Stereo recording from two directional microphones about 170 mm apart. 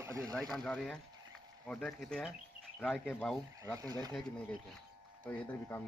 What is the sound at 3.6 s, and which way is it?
Speech, 20° right (ahead or behind).